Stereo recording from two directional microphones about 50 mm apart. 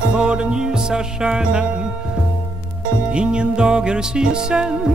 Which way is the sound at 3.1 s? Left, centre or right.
Centre.